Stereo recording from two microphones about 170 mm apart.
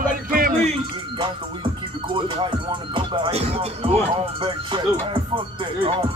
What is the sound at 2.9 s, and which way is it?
Speech, 30° right (ahead or behind).